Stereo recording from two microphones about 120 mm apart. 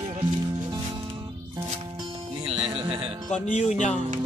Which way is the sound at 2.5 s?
45° right (ahead or behind).